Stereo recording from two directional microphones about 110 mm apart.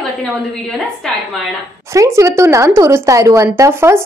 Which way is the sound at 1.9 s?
30° right (ahead or behind).